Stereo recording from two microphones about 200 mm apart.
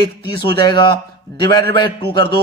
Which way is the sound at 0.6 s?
20° left (ahead or behind).